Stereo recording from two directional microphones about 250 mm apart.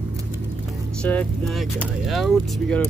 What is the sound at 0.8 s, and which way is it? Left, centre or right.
Speech, centre.